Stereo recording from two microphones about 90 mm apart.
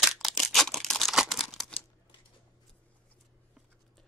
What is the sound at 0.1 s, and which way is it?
Crumpling, centre (ahead or behind).